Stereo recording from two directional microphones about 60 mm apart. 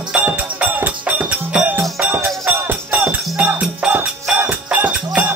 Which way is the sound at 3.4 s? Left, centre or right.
Right.